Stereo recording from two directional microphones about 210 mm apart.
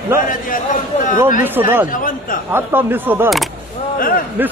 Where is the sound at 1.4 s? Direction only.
10° right (ahead or behind).